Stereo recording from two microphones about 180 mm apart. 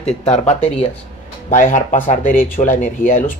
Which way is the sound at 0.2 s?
35° left (ahead or behind).